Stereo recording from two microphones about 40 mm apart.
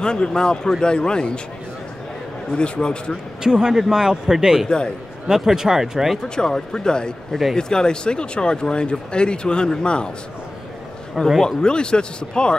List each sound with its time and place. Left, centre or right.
0.0 s speech: left
2.5 s speech: left
3.4 s a man's voice: centre
4.6 s speech: centre
5.3 s a man's voice: centre
6.2 s speech: centre
11.4 s speech: left